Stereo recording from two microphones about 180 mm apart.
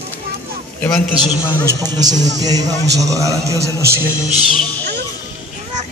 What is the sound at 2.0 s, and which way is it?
A man's voice, 20° right (ahead or behind).